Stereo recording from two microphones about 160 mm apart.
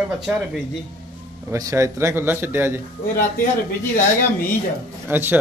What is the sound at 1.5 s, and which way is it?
A man's voice, 15° right (ahead or behind).